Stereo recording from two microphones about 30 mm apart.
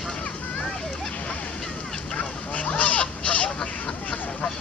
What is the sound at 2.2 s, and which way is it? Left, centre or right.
Honk, left.